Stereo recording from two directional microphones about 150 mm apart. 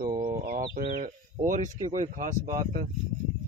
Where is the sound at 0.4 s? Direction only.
70° right (ahead or behind).